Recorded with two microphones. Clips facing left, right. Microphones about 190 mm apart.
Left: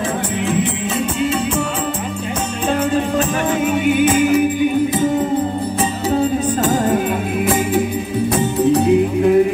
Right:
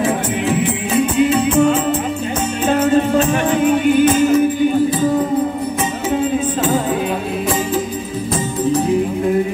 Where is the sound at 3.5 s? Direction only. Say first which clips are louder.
Right 3 dB; 5° left (ahead or behind).